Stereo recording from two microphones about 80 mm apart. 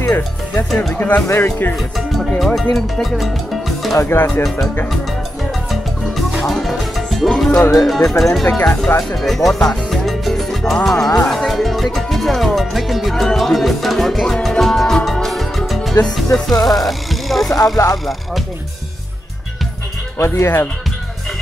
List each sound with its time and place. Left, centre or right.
0.0 s speech: left
0.9 s speech: centre
1.2 s speech: left
2.0 s speech: centre
4.0 s speech: left
6.4 s music: centre
7.8 s speech: centre
8.5 s speech: centre
9.1 s salsa music: centre
11.2 s music: centre
16.3 s speech: centre
17.8 s speech: left
20.2 s speech: left